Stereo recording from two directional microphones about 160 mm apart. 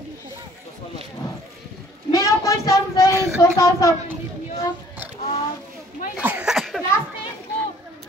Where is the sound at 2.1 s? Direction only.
20° left (ahead or behind).